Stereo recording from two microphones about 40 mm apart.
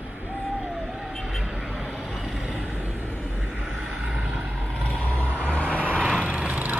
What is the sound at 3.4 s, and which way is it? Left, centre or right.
Vehicle, centre.